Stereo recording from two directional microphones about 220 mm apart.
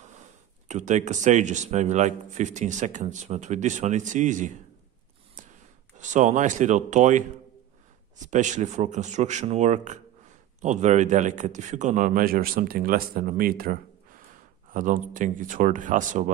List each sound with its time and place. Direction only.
0.7 s speech: 30° right (ahead or behind)
5.4 s a sound: 35° right (ahead or behind)
5.9 s speech: 35° right (ahead or behind)